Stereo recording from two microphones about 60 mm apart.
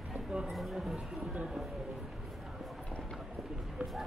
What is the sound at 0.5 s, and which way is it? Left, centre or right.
Speech, centre.